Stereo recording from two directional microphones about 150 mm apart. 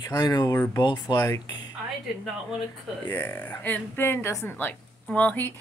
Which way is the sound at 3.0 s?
15° left (ahead or behind).